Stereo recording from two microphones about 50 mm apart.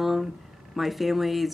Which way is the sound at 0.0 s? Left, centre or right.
Centre.